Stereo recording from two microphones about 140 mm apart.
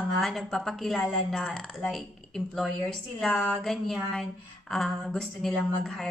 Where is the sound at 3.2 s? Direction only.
5° left (ahead or behind).